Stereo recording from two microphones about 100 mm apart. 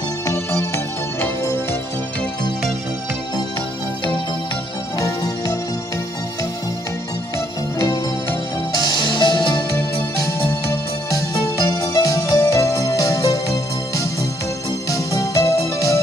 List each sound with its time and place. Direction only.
1.2 s music: 25° left (ahead or behind)
4.9 s music: 30° left (ahead or behind)
8.8 s music: 50° left (ahead or behind)
10.2 s music: 30° left (ahead or behind)